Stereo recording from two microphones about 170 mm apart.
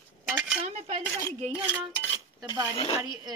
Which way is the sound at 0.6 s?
45° right (ahead or behind).